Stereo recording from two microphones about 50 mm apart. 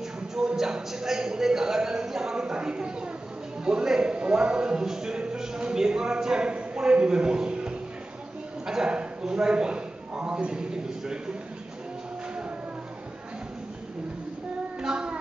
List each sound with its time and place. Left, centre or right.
0.6 s speech: centre
8.6 s a sound: centre
8.9 s a man's voice: centre
14.8 s child singing: centre